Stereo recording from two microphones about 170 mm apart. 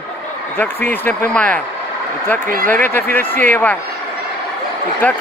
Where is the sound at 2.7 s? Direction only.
10° left (ahead or behind).